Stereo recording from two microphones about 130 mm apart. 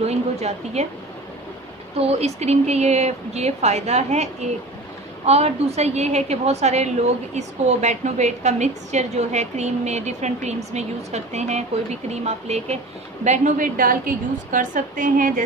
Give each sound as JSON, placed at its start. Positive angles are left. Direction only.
{"t": 0.0, "sound": "a woman's voice", "side_deg": -55}
{"t": 2.0, "sound": "a woman's voice", "side_deg": -50}